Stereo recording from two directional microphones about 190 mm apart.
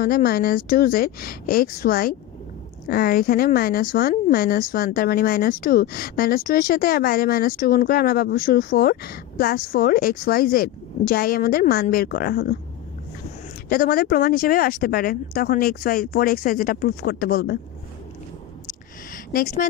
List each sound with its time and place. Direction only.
0.0 s a woman's voice: 50° left (ahead or behind)
13.7 s a woman's voice: 50° left (ahead or behind)
19.3 s speech: 40° left (ahead or behind)